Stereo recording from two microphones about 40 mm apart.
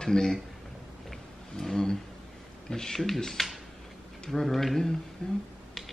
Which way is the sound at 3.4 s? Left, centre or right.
Centre.